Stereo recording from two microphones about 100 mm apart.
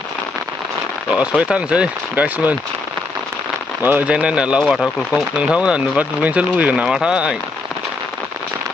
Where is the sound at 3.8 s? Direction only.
20° right (ahead or behind).